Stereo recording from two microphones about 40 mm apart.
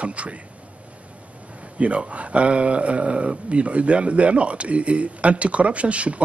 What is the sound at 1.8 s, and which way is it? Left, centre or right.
Speech, right.